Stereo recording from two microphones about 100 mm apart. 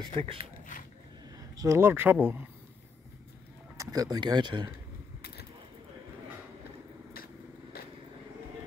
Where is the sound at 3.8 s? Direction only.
35° right (ahead or behind).